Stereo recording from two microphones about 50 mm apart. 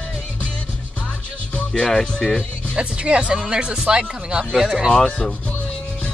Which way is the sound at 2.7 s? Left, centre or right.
Right.